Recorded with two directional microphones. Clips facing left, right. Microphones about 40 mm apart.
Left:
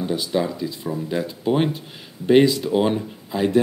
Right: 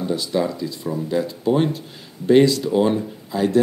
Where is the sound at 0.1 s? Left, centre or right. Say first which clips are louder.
Right 2 dB; centre.